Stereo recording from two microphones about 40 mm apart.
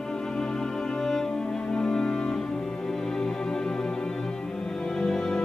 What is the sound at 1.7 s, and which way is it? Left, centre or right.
Music, centre.